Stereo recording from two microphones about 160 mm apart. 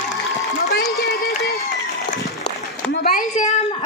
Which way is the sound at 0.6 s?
65° left (ahead or behind).